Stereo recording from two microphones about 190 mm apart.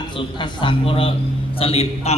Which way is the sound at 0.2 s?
25° left (ahead or behind).